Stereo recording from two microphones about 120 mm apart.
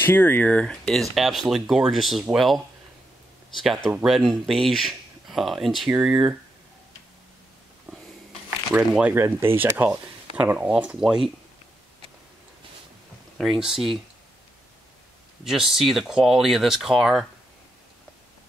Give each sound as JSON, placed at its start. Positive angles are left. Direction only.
{"t": 0.0, "sound": "speech", "side_deg": 15}
{"t": 3.6, "sound": "speech", "side_deg": 0}
{"t": 8.7, "sound": "speech", "side_deg": -15}
{"t": 13.4, "sound": "speech", "side_deg": 0}
{"t": 15.4, "sound": "speech", "side_deg": -5}